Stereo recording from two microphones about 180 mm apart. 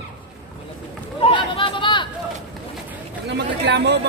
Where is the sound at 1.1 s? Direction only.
30° left (ahead or behind).